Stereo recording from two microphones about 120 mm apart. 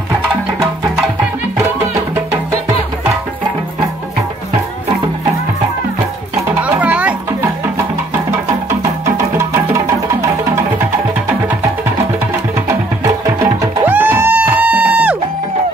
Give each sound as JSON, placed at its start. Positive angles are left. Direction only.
{"t": 6.8, "sound": "music", "side_deg": -10}
{"t": 9.0, "sound": "music", "side_deg": -20}
{"t": 13.8, "sound": "music", "side_deg": -15}